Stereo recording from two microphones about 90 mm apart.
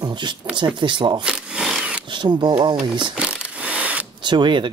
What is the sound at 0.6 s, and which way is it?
Speech, 60° right (ahead or behind).